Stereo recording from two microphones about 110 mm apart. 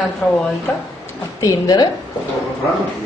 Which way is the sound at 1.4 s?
35° left (ahead or behind).